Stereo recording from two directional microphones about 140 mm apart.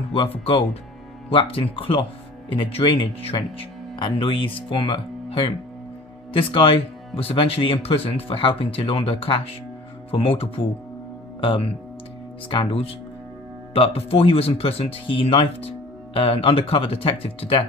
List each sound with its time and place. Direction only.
1.3 s speech: 40° left (ahead or behind)